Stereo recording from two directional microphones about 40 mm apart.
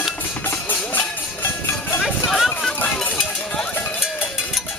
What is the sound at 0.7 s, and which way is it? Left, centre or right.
Music, left.